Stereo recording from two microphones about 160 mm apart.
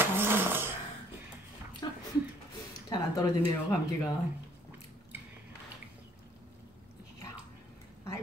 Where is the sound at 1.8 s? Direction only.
25° left (ahead or behind).